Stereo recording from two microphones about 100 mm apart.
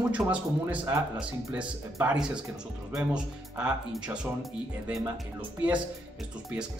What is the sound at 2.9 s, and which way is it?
Speech, 10° right (ahead or behind).